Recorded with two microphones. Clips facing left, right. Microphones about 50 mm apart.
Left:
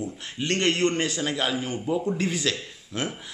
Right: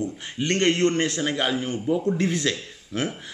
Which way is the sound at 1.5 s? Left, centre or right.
Centre.